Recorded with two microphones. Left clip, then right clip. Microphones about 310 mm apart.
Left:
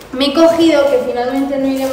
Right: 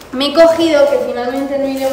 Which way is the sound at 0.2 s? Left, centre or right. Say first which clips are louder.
Right 1 dB; centre.